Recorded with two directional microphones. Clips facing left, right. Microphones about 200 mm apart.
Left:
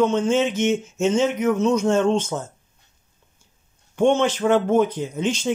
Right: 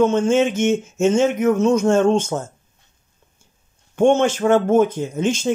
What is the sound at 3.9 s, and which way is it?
Speech, 50° right (ahead or behind).